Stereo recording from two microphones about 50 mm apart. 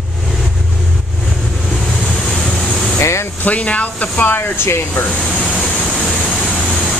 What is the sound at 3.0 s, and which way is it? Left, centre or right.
Spray, left.